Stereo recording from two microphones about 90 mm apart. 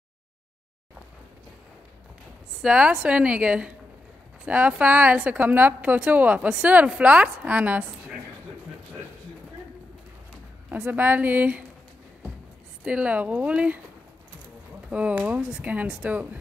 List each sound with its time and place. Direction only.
2.6 s a woman's voice: 10° right (ahead or behind)
10.7 s a woman's voice: 20° right (ahead or behind)
12.8 s a woman's voice: 15° right (ahead or behind)
14.9 s a woman's voice: 15° right (ahead or behind)